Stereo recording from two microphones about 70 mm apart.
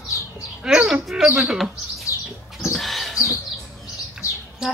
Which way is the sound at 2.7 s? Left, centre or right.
Centre.